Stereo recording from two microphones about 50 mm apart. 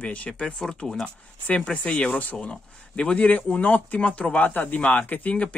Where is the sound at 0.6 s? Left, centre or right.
Centre.